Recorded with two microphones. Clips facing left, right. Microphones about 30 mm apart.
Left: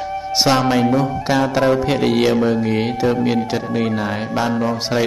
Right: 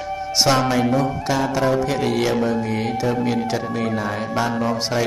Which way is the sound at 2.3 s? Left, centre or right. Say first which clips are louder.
Left 4 dB; centre.